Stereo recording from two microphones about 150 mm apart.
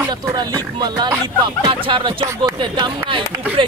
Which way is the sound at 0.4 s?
30° right (ahead or behind).